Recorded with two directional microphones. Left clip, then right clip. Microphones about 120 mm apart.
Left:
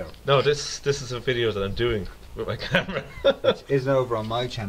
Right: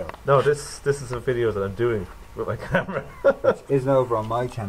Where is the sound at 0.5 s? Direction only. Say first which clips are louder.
Even; 30° left (ahead or behind).